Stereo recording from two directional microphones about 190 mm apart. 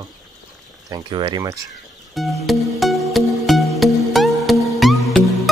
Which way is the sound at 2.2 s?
Centre (ahead or behind).